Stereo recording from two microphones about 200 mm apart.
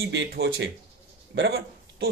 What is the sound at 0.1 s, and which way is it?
Speech, 60° right (ahead or behind).